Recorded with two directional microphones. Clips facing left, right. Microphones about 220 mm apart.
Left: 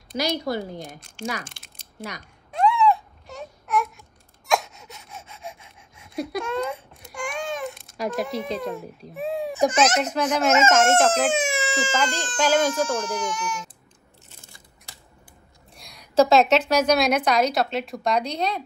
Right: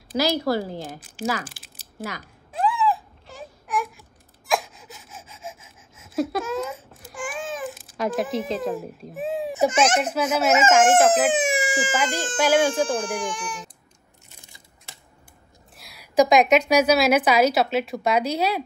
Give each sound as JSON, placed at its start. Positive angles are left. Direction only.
{"t": 1.5, "sound": "a sound", "side_deg": -5}
{"t": 2.5, "sound": "baby cry", "side_deg": 0}
{"t": 4.5, "sound": "gasp", "side_deg": 0}
{"t": 9.7, "sound": "a child's voice", "side_deg": -30}
{"t": 10.1, "sound": "a woman's voice", "side_deg": -5}
{"t": 11.3, "sound": "speech", "side_deg": -15}
{"t": 12.8, "sound": "speech", "side_deg": -30}
{"t": 15.7, "sound": "a woman's voice", "side_deg": -5}